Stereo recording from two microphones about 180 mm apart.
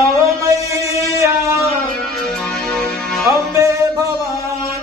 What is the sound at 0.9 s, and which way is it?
Music, 15° right (ahead or behind).